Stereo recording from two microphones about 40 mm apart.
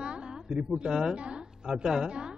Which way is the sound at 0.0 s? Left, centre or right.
Right.